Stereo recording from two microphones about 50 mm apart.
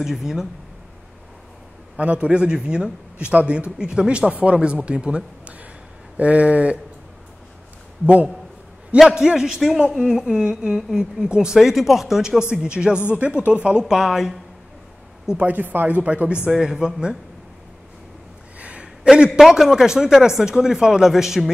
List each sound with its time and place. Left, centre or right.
0.0 s speech: centre
2.0 s a man's voice: right
4.3 s a man's voice: right
9.1 s a man's voice: centre
13.9 s speech: centre
15.3 s speech: right
16.4 s speech: centre
18.6 s a sound: right
19.3 s speech: centre